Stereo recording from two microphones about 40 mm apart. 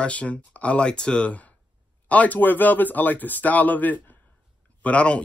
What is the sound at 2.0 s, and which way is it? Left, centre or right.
Speech, left.